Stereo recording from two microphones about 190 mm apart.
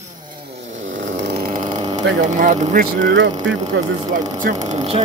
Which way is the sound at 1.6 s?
25° right (ahead or behind).